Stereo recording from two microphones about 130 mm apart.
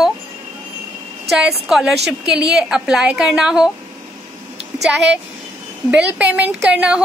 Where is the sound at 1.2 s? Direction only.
5° right (ahead or behind).